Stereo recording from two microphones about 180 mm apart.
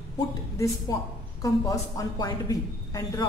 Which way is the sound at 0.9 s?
20° left (ahead or behind).